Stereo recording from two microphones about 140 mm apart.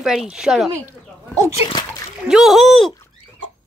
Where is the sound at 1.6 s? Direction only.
30° left (ahead or behind).